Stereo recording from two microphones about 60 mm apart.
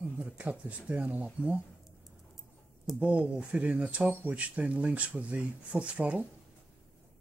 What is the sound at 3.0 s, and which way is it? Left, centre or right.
Speech, right.